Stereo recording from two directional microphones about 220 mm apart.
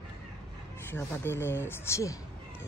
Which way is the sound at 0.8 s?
10° left (ahead or behind).